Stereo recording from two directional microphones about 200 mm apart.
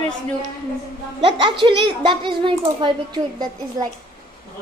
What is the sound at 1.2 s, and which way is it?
A child's voice, 25° right (ahead or behind).